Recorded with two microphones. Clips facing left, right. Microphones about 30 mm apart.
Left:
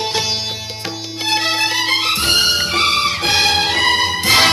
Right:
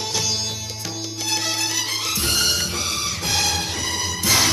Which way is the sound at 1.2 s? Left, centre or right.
Left.